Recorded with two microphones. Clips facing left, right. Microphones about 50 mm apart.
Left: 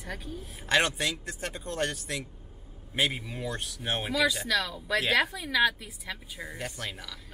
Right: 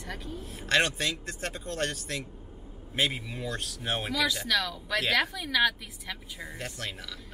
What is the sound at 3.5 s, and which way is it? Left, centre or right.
Speech, centre.